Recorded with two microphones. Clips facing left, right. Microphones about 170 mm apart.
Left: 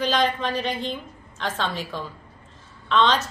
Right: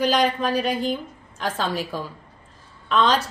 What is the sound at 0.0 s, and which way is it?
A woman's voice, 10° right (ahead or behind).